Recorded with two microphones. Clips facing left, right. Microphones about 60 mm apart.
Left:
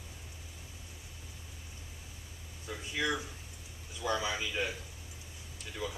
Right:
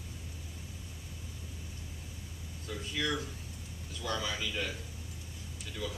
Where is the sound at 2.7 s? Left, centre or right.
Centre.